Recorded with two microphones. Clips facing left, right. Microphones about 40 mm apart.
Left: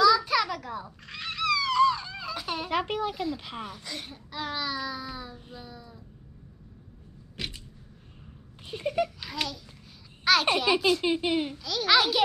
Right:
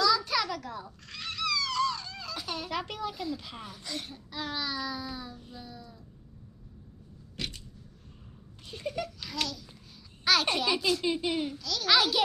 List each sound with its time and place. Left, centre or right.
0.0 s wail: centre
2.7 s a child's voice: left
3.6 s speech: centre
7.3 s a sound: centre
8.6 s a child's voice: left
9.2 s speech: centre
11.1 s speech: left